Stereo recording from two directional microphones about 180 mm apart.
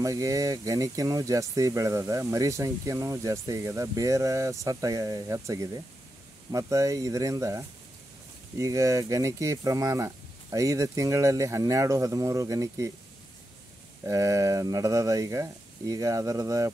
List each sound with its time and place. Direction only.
0.0 s speech: 20° right (ahead or behind)
14.0 s speech: 20° right (ahead or behind)